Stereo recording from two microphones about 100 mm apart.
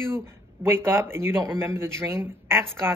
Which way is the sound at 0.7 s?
25° right (ahead or behind).